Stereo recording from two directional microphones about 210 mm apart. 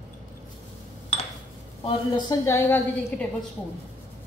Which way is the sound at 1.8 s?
20° left (ahead or behind).